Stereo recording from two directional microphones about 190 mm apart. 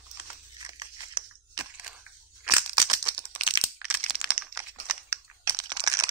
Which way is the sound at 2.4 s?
20° right (ahead or behind).